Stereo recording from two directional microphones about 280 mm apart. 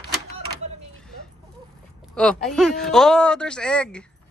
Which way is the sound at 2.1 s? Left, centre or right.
Centre.